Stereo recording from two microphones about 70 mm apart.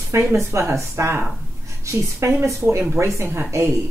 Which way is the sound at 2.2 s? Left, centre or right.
Right.